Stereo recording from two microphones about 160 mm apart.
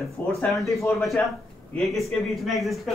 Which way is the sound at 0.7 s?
20° left (ahead or behind).